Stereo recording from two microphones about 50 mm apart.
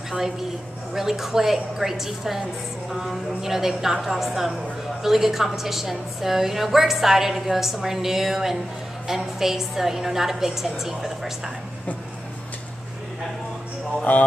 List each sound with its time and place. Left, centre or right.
0.9 s a woman's voice: centre
14.1 s music: left